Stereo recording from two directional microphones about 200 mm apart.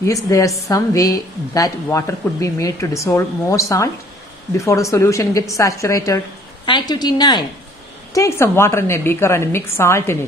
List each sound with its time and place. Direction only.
0.0 s a woman's voice: 15° left (ahead or behind)